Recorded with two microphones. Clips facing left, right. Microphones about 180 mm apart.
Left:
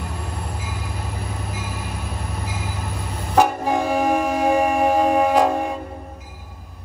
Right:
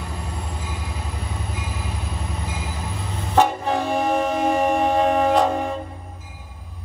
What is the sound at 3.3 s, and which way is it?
Music, 10° left (ahead or behind).